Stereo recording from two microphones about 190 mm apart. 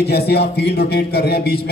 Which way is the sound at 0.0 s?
60° left (ahead or behind).